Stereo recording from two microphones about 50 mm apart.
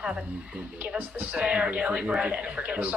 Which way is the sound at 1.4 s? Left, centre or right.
Right.